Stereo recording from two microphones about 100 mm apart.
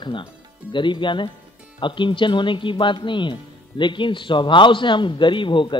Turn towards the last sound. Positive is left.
turn(degrees=55)  # may be behind; listen again after turning